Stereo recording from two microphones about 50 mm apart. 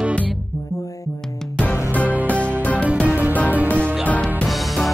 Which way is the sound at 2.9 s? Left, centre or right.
Right.